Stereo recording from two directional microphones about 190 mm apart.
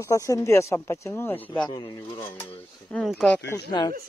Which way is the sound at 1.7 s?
25° left (ahead or behind).